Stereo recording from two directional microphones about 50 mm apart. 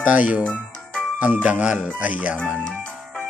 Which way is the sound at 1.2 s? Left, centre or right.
Right.